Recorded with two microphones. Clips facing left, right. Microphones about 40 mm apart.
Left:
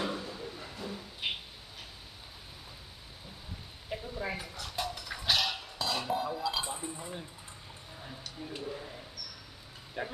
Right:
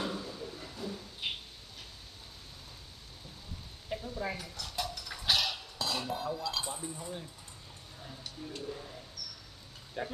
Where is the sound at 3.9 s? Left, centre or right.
Centre.